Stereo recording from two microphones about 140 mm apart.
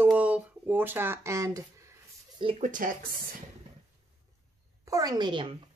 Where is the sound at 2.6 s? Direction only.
70° right (ahead or behind).